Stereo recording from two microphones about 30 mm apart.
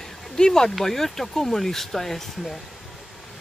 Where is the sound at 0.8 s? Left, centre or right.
Centre.